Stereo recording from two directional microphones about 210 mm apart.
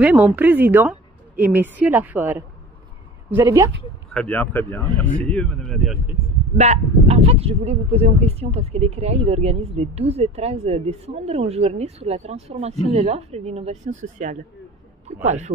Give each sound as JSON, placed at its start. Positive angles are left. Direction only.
{"t": 0.0, "sound": "a woman's voice", "side_deg": -5}
{"t": 4.1, "sound": "speech", "side_deg": 5}
{"t": 6.5, "sound": "speech", "side_deg": -30}